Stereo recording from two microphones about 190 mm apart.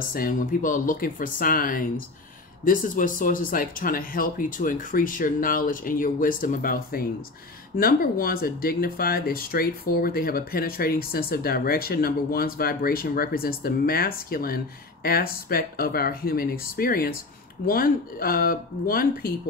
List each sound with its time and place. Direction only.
0.1 s speech: 45° left (ahead or behind)